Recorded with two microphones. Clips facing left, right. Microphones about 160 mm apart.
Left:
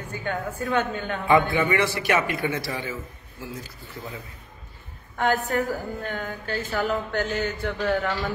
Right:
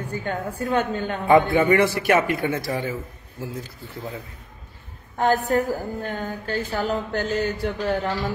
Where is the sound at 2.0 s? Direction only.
55° right (ahead or behind).